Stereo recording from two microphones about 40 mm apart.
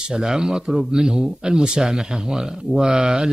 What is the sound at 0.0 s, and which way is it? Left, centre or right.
Speech, centre.